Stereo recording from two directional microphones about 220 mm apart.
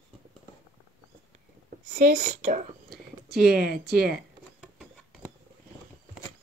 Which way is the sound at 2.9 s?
Centre (ahead or behind).